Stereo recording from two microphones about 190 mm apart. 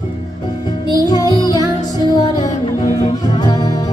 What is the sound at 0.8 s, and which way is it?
Music, 20° left (ahead or behind).